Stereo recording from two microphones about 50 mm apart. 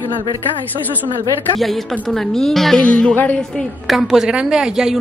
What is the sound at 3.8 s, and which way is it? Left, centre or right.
Speech, centre.